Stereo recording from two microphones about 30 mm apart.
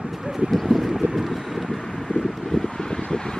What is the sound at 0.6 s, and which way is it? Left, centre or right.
Vehicle, centre.